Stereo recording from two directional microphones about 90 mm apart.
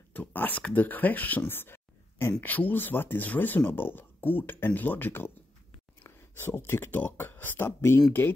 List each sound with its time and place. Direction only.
0.1 s speech: 20° left (ahead or behind)